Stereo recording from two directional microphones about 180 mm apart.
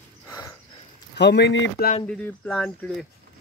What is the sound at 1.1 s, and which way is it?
Speech, 70° left (ahead or behind).